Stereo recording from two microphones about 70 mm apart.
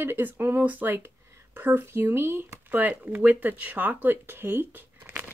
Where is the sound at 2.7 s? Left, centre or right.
Right.